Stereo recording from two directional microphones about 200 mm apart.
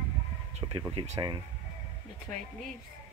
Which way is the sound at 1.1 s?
20° right (ahead or behind).